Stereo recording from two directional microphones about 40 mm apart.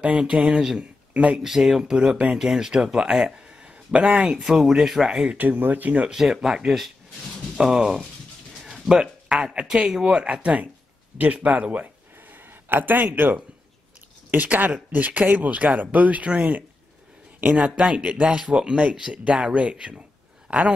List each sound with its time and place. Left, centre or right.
0.2 s speech: right
1.1 s speech: right
1.4 s speech: centre
3.9 s speech: right
4.5 s speech: centre
5.4 s speech: right
6.0 s speech: centre
8.5 s music: centre
9.4 s speech: right
12.6 s speech: right
17.4 s speech: right
19.0 s speech: centre
19.5 s speech: right